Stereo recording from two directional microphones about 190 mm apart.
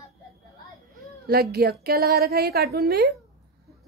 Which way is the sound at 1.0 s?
55° right (ahead or behind).